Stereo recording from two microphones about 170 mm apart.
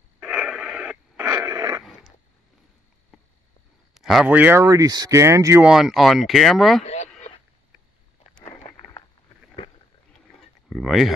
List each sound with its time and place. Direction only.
0.2 s wheeze: 5° right (ahead or behind)
1.8 s a sound: centre (ahead or behind)
3.9 s speech: centre (ahead or behind); by 5.7 s 15° right (ahead or behind)
5.7 s speech: 5° right (ahead or behind)
6.8 s a sound: 40° left (ahead or behind)
10.7 s speech: centre (ahead or behind)